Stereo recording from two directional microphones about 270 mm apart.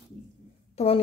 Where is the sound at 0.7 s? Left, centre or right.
Left.